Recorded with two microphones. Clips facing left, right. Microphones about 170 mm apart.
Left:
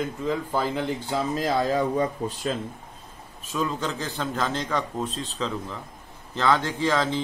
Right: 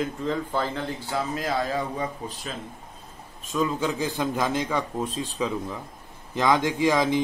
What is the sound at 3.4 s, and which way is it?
Speech, centre (ahead or behind).